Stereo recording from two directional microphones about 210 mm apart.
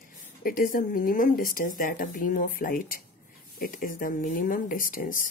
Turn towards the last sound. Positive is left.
turn(degrees=40)  # may be behind; listen again after turning